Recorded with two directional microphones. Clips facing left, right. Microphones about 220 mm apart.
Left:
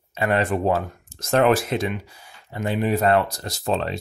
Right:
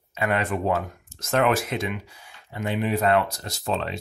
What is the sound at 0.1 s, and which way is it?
Speech, 35° left (ahead or behind).